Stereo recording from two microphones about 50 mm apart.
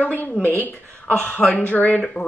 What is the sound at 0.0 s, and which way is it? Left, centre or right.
A woman's voice, left.